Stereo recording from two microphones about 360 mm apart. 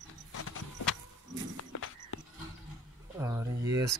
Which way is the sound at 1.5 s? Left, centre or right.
Left.